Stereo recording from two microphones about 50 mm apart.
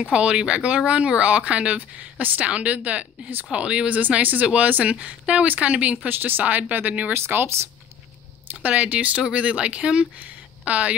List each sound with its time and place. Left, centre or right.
0.0 s speech: centre
4.0 s speech: right
7.2 s speech: right
8.6 s speech: right